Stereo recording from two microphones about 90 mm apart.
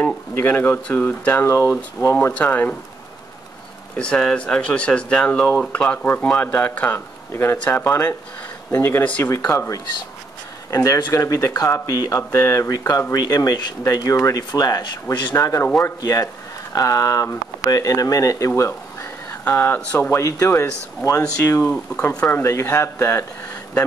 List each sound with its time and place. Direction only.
0.3 s speech: 25° left (ahead or behind)
2.3 s speech: 15° left (ahead or behind)
3.9 s speech: 10° left (ahead or behind); by 9.0 s 30° left (ahead or behind)
9.0 s speech: 15° left (ahead or behind)
9.5 s speech: 30° left (ahead or behind)
15.3 s speech: 30° left (ahead or behind)
18.6 s a sound: 30° left (ahead or behind)
19.8 s speech: 15° left (ahead or behind)
20.1 s speech: 35° left (ahead or behind)